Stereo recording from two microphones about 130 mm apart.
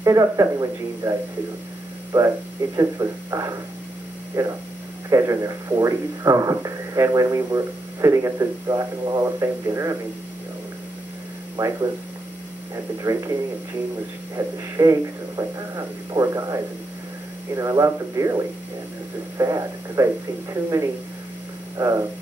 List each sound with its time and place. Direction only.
0.0 s speech: 25° right (ahead or behind)
2.1 s speech: 25° right (ahead or behind)
11.5 s speech: 25° right (ahead or behind)
21.7 s speech: 25° right (ahead or behind)